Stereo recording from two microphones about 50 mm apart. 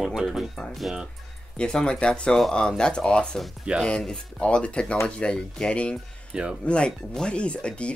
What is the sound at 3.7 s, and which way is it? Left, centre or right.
Speech, right.